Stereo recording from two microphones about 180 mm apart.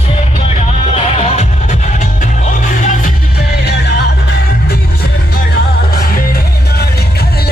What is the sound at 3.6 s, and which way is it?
Music, 65° left (ahead or behind).